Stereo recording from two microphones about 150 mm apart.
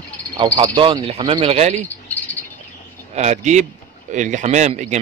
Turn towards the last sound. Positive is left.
turn(degrees=-50)  # may be behind; listen again after turning